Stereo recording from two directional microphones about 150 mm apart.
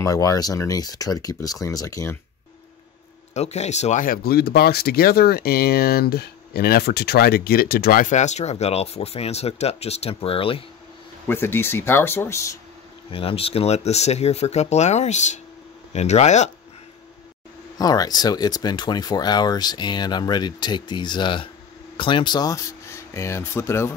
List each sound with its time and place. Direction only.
0.0 s speech: 25° left (ahead or behind)
3.3 s speech: 45° left (ahead or behind); by 8.1 s 80° left
8.1 s speech: 50° left (ahead or behind)
11.2 s speech: 15° left (ahead or behind)
13.1 s speech: 40° left (ahead or behind)
17.7 s speech: 25° left (ahead or behind)